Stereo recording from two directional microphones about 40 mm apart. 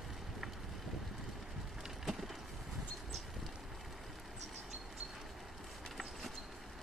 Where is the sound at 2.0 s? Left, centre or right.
Centre.